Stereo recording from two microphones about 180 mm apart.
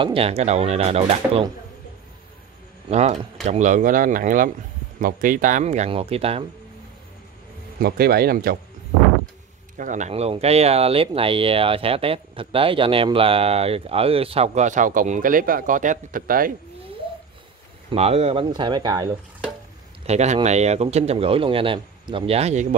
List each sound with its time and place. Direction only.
0.0 s speech: 30° right (ahead or behind)
2.9 s speech: 40° right (ahead or behind)
7.8 s speech: 60° right (ahead or behind)
9.8 s speech: 45° right (ahead or behind)
17.9 s speech: 35° right (ahead or behind)
20.1 s speech: 40° right (ahead or behind)